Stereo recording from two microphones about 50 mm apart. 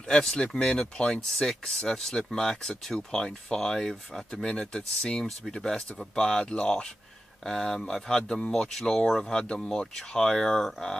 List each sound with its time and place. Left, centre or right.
0.1 s speech: centre